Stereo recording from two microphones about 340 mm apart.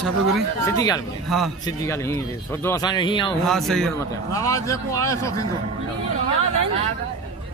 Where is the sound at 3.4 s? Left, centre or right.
Centre.